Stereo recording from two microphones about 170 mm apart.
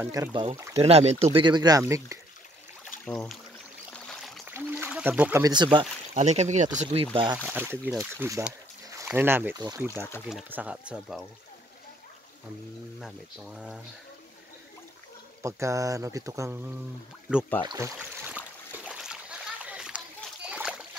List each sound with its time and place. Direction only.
0.0 s speech: 20° right (ahead or behind)
0.6 s speech: 15° right (ahead or behind)
0.8 s speech: 35° right (ahead or behind); by 2.1 s 20° right (ahead or behind)
3.1 s speech: 5° left (ahead or behind)
3.9 s a sound: centre (ahead or behind)
4.5 s a sound: 10° right (ahead or behind)
5.4 s speech: 25° right (ahead or behind)
6.1 s speech: 40° right (ahead or behind)
7.4 s speech: 10° right (ahead or behind)
13.0 s speech: centre (ahead or behind)
15.4 s speech: 20° right (ahead or behind)
17.6 s speech: 20° right (ahead or behind)
17.9 s splash: 10° right (ahead or behind)